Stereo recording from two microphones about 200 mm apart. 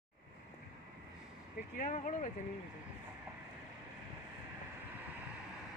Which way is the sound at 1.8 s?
40° left (ahead or behind).